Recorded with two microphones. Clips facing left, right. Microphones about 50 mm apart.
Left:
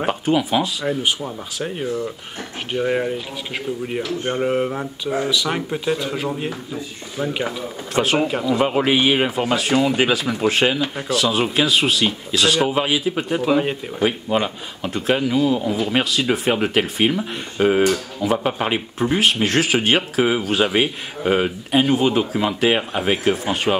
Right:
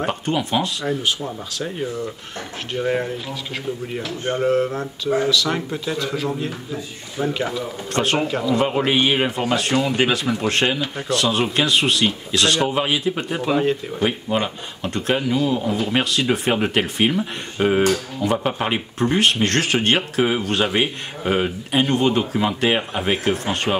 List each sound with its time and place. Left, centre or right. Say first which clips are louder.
0.0 s speech: left 3 dB; centre
7.9 s speech: left 2 dB; centre